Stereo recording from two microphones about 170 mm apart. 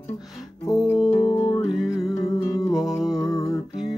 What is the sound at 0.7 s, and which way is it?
Music, 20° left (ahead or behind).